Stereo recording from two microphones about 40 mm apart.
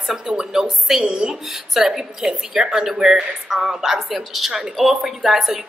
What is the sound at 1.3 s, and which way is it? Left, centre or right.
A woman's voice, centre.